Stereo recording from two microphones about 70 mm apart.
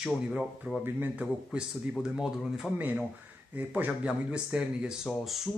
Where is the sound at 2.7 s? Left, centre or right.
Right.